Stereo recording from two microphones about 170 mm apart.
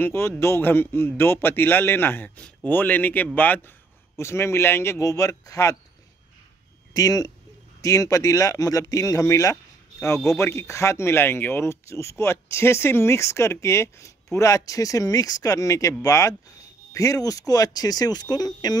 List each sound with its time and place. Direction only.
0.0 s speech: 15° left (ahead or behind)
6.9 s speech: 20° left (ahead or behind)